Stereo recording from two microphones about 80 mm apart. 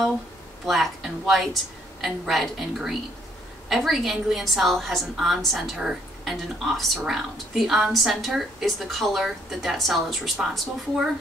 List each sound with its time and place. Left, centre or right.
0.7 s a woman's voice: centre